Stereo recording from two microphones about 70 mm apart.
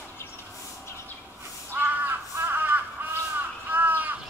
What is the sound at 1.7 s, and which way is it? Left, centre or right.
Crow, right.